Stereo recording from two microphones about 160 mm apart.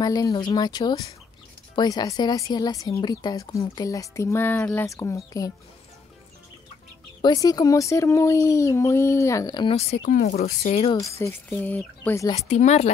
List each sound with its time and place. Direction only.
0.0 s speech: 25° left (ahead or behind)
7.2 s speech: 25° left (ahead or behind)
9.8 s speech: 40° left (ahead or behind)
11.0 s speech: 20° left (ahead or behind)
12.4 s speech: 45° left (ahead or behind)